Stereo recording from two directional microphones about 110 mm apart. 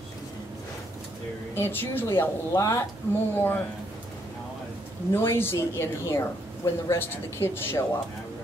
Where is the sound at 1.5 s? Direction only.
20° left (ahead or behind).